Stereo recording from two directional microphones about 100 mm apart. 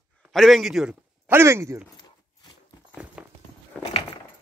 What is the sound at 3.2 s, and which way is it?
Walk, 10° right (ahead or behind).